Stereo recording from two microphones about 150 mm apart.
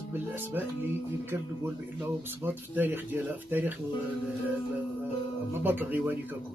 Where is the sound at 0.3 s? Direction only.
15° right (ahead or behind).